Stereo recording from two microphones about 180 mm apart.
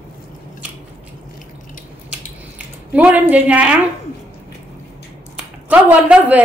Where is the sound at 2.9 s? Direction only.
10° right (ahead or behind).